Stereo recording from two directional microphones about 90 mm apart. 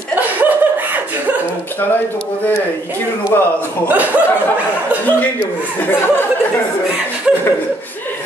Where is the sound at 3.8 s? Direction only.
20° right (ahead or behind).